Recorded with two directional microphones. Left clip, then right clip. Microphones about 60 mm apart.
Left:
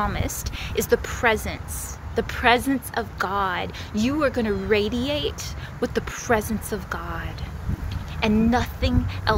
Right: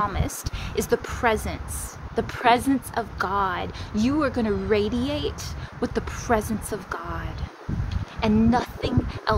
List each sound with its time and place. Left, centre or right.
0.0 s speech: centre
0.6 s speech: right
7.0 s speech: centre
8.2 s speech: centre